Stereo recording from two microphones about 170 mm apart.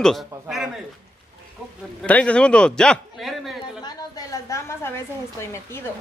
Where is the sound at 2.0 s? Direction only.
5° left (ahead or behind).